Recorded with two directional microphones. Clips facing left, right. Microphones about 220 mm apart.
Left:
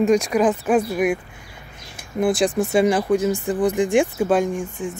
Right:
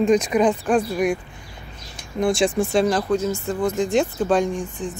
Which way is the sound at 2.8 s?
15° left (ahead or behind).